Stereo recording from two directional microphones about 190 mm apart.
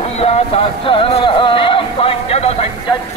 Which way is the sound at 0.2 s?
30° left (ahead or behind).